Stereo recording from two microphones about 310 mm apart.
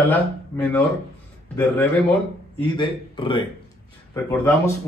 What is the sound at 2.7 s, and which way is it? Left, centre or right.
Speech, centre.